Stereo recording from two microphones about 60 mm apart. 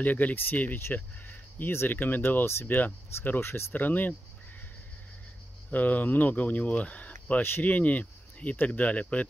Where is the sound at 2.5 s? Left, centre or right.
Left.